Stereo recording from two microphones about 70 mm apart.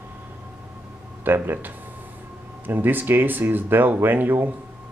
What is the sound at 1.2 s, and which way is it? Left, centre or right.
Speech, right.